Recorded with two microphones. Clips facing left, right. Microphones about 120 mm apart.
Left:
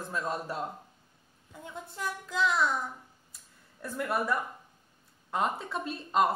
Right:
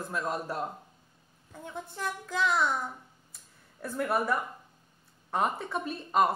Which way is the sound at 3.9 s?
20° right (ahead or behind).